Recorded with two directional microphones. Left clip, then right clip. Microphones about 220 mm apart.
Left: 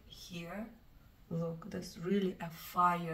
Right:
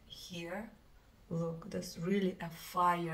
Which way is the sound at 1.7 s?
5° right (ahead or behind).